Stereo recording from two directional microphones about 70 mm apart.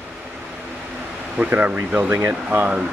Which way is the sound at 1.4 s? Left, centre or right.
Right.